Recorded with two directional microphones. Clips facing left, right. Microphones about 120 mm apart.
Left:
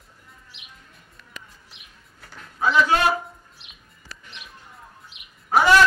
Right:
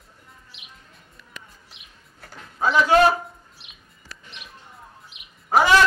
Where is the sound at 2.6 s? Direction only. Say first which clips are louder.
Right 3 dB; 30° right (ahead or behind).